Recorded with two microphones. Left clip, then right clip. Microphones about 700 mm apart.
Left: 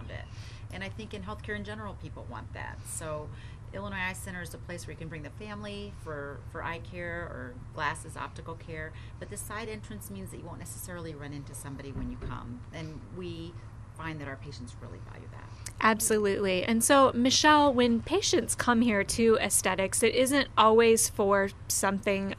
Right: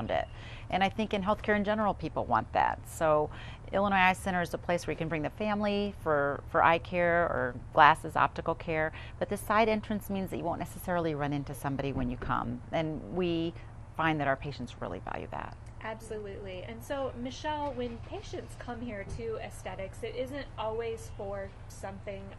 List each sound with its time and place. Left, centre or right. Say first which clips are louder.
0.7 s a woman's voice: right 12 dB; right
15.8 s a woman's voice: left 14 dB; left